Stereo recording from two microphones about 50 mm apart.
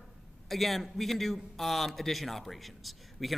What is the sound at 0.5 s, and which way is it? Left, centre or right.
A man's voice, centre.